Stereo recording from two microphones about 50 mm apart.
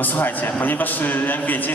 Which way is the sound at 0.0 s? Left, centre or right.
Left.